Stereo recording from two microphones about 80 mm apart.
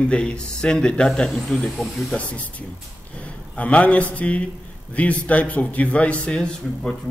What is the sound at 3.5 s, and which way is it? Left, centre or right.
Speech, centre.